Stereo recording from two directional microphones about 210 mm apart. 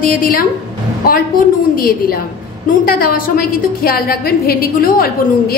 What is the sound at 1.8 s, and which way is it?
A woman's voice, 45° left (ahead or behind).